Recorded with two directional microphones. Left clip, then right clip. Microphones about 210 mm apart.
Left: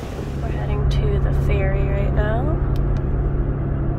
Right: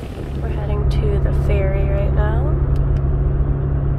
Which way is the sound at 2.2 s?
15° left (ahead or behind).